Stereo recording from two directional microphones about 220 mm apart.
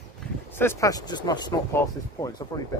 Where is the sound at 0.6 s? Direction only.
10° left (ahead or behind).